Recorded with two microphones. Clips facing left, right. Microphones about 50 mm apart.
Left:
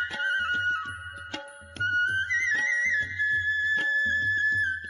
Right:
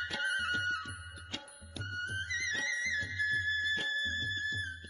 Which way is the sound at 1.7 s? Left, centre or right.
Left.